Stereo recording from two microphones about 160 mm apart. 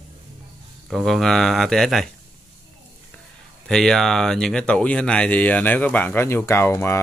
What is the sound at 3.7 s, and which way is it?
Speech, 5° left (ahead or behind).